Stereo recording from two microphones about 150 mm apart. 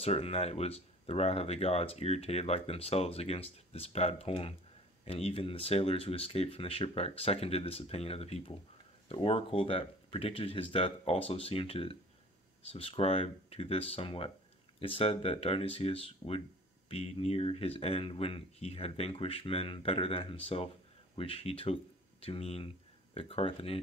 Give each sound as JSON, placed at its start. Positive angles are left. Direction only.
{"t": 0.0, "sound": "speech", "side_deg": 45}